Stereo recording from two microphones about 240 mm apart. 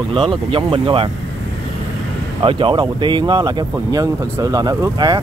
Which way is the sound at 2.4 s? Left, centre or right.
Right.